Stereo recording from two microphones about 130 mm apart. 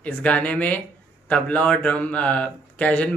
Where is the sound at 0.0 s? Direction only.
10° left (ahead or behind).